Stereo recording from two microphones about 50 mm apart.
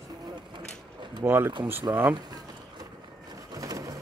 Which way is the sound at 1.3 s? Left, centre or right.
Right.